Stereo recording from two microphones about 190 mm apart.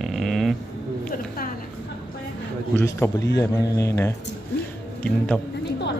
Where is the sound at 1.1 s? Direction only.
50° left (ahead or behind).